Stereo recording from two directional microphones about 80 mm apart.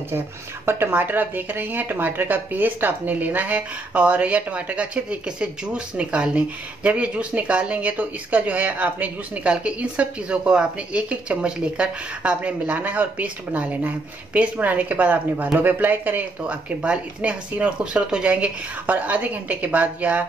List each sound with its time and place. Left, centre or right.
0.7 s a woman's voice: right